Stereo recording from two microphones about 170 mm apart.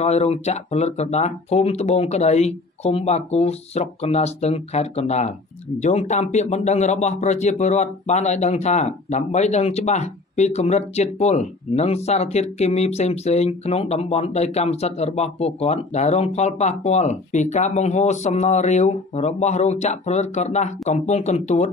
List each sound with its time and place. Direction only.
0.0 s speech: 40° left (ahead or behind)